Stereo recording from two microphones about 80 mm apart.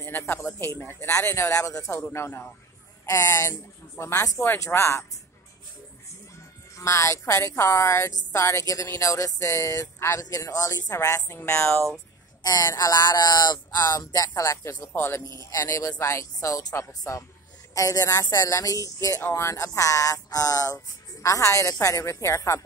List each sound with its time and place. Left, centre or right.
0.3 s a woman's voice: left
1.9 s a woman's voice: left
6.7 s a woman's voice: left
12.4 s a woman's voice: left